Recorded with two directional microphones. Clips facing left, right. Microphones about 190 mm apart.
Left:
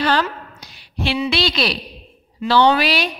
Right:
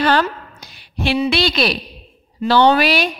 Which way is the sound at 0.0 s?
50° right (ahead or behind).